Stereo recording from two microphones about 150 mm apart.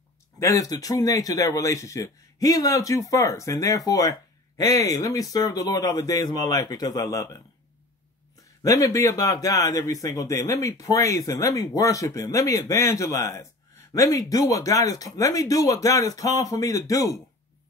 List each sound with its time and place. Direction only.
0.4 s speech: 20° left (ahead or behind)
8.6 s speech: 20° left (ahead or behind)